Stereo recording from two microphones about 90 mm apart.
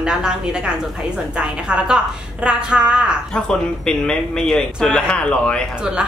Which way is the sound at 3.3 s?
10° left (ahead or behind).